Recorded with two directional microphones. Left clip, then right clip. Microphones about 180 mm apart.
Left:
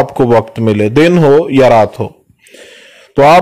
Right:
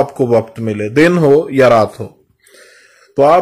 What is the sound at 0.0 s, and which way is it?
Speech, 35° left (ahead or behind).